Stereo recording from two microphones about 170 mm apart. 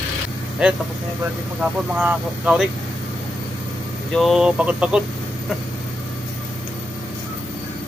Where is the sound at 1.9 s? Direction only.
5° right (ahead or behind).